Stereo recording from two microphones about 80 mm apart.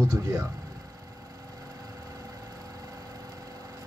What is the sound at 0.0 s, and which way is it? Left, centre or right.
Speech, right.